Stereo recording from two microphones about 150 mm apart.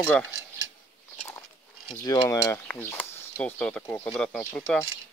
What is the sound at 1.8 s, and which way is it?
Speech, 30° left (ahead or behind).